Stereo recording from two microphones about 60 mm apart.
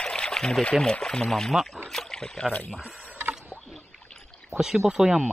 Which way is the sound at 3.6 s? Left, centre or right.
Centre.